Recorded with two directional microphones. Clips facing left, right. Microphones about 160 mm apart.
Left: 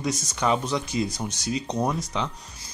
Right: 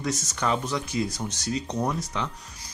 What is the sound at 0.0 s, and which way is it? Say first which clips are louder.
Speech: left 2 dB; 15° left (ahead or behind).